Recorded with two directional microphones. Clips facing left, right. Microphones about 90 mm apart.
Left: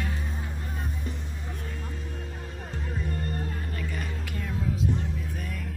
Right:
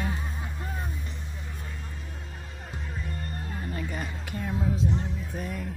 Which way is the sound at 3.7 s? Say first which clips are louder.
Right 1 dB; 25° right (ahead or behind).